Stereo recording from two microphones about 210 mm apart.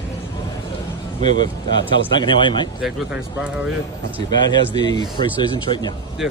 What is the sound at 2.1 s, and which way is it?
Speech, 25° left (ahead or behind).